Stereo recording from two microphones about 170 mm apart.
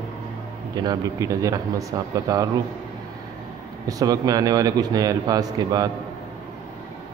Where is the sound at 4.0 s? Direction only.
20° right (ahead or behind).